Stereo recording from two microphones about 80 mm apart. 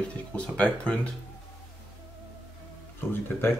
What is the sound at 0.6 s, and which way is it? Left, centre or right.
Speech, centre.